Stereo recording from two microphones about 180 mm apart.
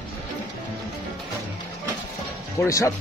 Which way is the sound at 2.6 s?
15° left (ahead or behind).